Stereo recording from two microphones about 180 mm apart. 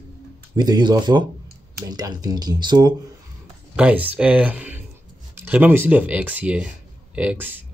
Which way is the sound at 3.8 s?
10° right (ahead or behind).